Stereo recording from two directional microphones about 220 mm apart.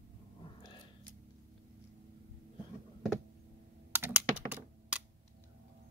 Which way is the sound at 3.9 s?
10° right (ahead or behind).